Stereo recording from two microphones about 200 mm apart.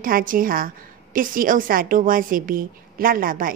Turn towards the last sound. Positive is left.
turn(degrees=-45)  # may be behind; listen again after turning